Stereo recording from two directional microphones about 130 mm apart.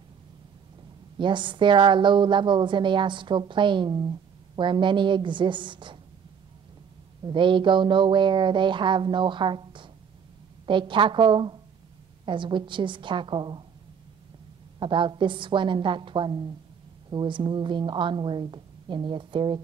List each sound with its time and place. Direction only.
1.1 s a woman's voice: 40° right (ahead or behind)
7.2 s a woman's voice: 40° right (ahead or behind)
14.8 s a woman's voice: 40° right (ahead or behind)